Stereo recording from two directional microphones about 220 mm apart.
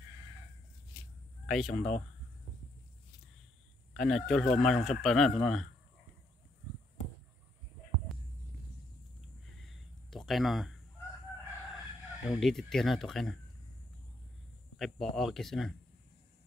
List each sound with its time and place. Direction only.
1.4 s speech: centre (ahead or behind)
3.9 s speech: centre (ahead or behind)
9.6 s a sound: centre (ahead or behind)
12.3 s speech: centre (ahead or behind)
14.8 s speech: centre (ahead or behind)